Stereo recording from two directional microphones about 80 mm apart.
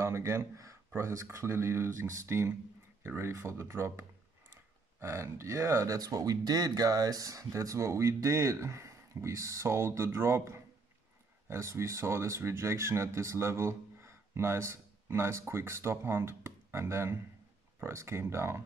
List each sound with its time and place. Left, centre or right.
0.0 s speech: right
5.0 s speech: right